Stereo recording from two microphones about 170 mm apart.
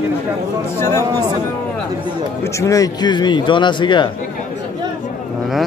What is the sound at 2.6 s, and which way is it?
A man's voice, 20° left (ahead or behind).